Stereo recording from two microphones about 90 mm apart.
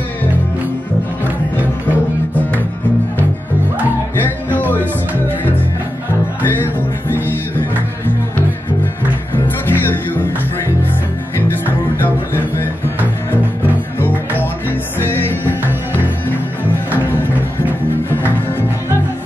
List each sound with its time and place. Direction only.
4.2 s music: 20° left (ahead or behind)
9.7 s music: 20° left (ahead or behind)
13.9 s music: 25° left (ahead or behind)